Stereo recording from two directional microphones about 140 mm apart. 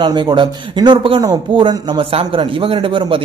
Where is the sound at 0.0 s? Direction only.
35° right (ahead or behind).